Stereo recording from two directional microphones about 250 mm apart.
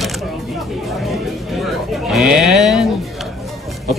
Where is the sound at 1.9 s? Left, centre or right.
Centre.